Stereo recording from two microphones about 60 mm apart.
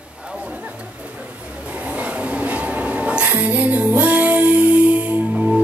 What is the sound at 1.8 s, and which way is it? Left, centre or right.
Music, right.